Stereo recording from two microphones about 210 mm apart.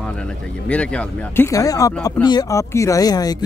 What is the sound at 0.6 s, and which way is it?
Speech, 5° left (ahead or behind).